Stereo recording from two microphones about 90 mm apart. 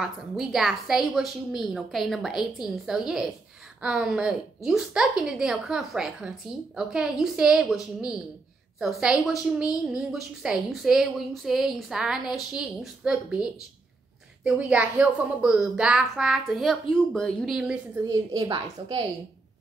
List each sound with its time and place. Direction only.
0.0 s a woman's voice: centre (ahead or behind)
18.3 s a woman's voice: 90° right